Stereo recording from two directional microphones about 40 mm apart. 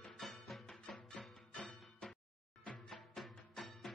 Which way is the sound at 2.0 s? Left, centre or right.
Centre.